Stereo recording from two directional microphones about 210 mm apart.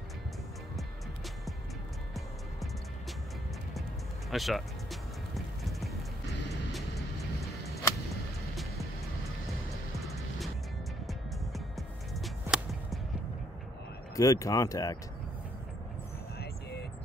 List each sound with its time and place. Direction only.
4.3 s speech: centre (ahead or behind)
5.3 s music: centre (ahead or behind)
9.9 s music: centre (ahead or behind)
14.1 s speech: 15° left (ahead or behind)